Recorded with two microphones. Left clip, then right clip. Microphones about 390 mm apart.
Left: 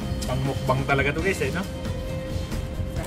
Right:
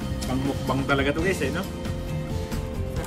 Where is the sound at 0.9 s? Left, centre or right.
Centre.